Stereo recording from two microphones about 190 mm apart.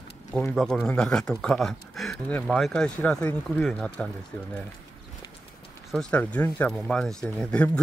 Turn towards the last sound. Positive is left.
turn(degrees=5)  # may be behind; listen again after turning